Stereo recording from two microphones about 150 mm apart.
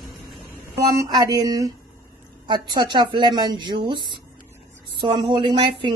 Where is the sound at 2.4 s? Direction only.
30° right (ahead or behind).